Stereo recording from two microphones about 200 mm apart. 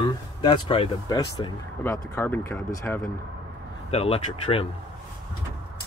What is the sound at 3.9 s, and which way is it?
Speech, 30° left (ahead or behind).